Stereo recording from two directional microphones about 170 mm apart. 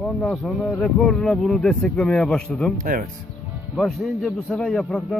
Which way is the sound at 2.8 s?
55° right (ahead or behind).